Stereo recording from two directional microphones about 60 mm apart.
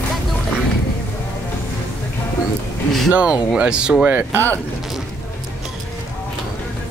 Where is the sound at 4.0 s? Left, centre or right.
Right.